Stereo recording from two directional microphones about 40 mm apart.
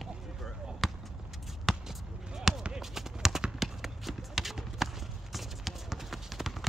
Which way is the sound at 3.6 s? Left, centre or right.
Centre.